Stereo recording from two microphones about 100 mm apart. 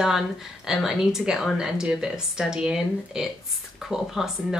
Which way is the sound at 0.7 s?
5° right (ahead or behind).